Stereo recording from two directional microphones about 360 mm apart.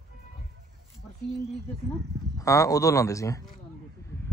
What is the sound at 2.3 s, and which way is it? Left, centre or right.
Speech, centre.